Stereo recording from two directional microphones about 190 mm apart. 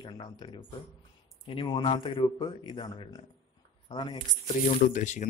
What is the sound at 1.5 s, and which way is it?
Speech, 25° left (ahead or behind).